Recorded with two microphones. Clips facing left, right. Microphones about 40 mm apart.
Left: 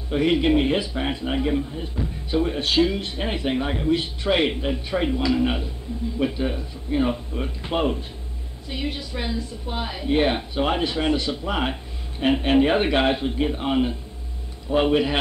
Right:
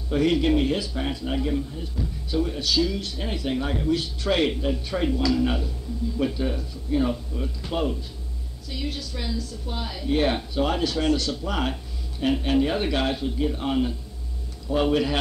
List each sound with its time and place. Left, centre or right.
0.1 s a man's voice: left